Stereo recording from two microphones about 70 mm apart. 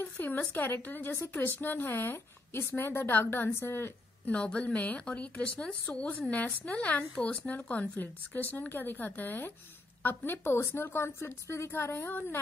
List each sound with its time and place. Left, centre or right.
0.0 s a woman's voice: left
4.3 s a woman's voice: centre; by 12.4 s left